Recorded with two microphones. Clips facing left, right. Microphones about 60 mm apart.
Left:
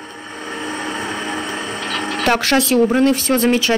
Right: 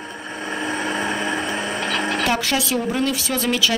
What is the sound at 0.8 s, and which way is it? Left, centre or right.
Vehicle, right.